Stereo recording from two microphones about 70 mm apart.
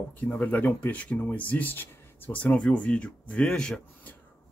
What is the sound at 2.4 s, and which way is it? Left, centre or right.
Speech, centre.